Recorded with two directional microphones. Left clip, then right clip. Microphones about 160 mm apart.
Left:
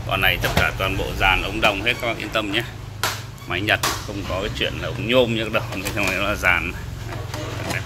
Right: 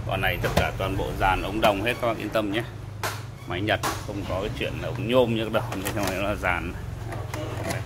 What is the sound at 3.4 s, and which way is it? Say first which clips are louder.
Speech: left 5 dB; 15° right (ahead or behind).